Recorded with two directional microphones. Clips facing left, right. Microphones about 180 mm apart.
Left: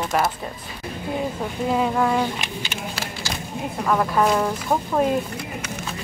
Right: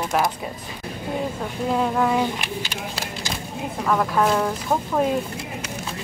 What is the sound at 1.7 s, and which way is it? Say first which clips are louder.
Speech: even; centre (ahead or behind).